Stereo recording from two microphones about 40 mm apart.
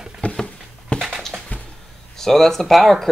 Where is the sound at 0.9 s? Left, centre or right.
Left.